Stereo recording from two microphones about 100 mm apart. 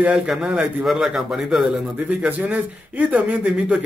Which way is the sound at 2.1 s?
15° right (ahead or behind).